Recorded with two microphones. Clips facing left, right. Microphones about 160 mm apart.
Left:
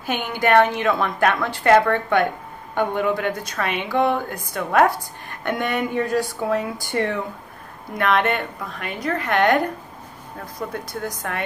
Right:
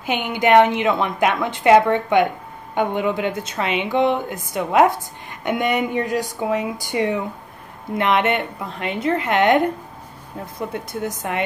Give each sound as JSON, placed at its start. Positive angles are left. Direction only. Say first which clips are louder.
{"t": 0.0, "sound": "a woman's voice", "louder": "right 2 dB", "side_deg": -20}
{"t": 10.7, "sound": "a woman's voice", "louder": "right 2 dB", "side_deg": -20}